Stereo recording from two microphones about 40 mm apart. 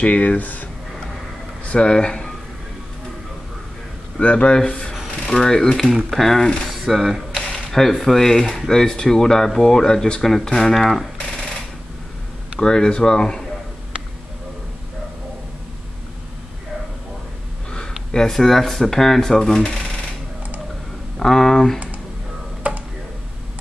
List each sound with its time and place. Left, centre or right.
0.0 s speech: left
1.7 s speech: left
4.2 s speech: left
6.0 s speech: centre
6.9 s speech: centre
7.5 s a sound: centre
8.0 s speech: centre
12.5 s speech: centre
17.6 s speech: centre
21.2 s speech: centre
22.7 s tick-tock: right